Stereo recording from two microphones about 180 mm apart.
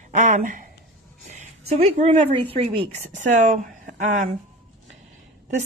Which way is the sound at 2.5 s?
35° right (ahead or behind).